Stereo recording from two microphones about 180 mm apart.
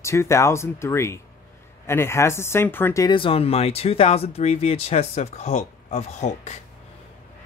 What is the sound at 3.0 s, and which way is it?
Speech, 30° left (ahead or behind).